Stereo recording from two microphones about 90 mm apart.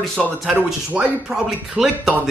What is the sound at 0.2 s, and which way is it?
Speech, 5° left (ahead or behind).